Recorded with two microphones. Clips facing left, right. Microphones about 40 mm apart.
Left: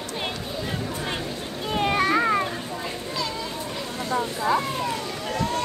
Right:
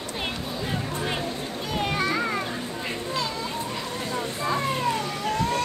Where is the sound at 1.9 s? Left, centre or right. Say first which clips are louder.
Left 6 dB; left.